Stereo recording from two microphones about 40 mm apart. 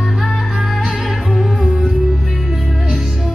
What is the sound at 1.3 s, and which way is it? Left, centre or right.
Music, centre.